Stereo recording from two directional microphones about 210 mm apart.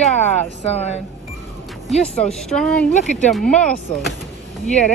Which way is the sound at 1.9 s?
Centre (ahead or behind).